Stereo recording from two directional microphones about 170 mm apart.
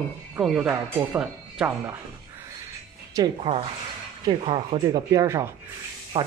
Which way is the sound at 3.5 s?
30° right (ahead or behind).